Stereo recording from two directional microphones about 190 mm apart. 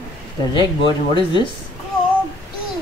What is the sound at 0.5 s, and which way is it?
Speech, 25° left (ahead or behind).